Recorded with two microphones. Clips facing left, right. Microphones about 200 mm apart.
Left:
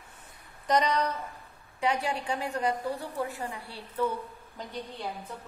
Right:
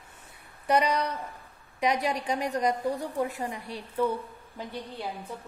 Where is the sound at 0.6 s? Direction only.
10° right (ahead or behind).